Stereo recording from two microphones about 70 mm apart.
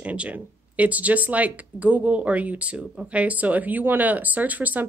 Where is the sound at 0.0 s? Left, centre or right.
Centre.